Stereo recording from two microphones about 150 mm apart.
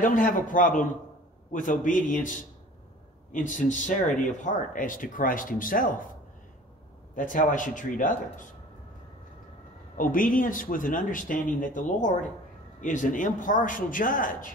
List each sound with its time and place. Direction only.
0.0 s speech: 60° left (ahead or behind)
7.2 s speech: 65° left (ahead or behind)
9.9 s speech: 65° left (ahead or behind)